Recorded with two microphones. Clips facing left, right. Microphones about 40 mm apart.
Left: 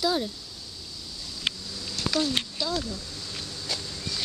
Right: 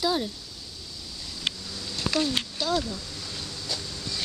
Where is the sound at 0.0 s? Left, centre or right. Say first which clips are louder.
Even; centre.